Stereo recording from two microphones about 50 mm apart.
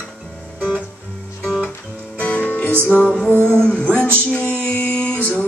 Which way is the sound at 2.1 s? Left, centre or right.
Left.